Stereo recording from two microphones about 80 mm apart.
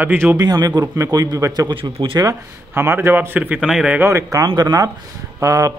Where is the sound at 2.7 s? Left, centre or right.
Right.